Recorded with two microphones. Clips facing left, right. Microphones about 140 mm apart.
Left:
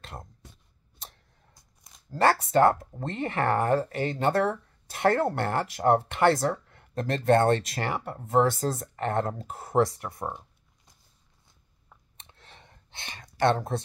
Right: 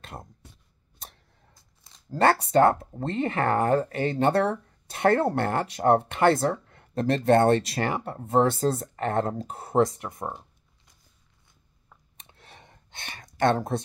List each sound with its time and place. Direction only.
2.2 s speech: 25° right (ahead or behind)
12.3 s a sound: 15° right (ahead or behind)
13.4 s speech: 35° right (ahead or behind)